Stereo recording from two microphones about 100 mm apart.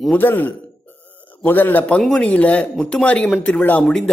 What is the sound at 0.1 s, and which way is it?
A man's voice, 20° left (ahead or behind).